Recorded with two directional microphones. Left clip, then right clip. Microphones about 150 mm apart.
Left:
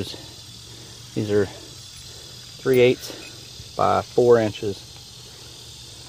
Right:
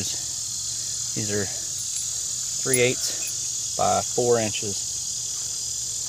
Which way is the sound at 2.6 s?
30° left (ahead or behind).